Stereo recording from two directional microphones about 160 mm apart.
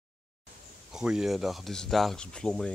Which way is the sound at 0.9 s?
5° right (ahead or behind).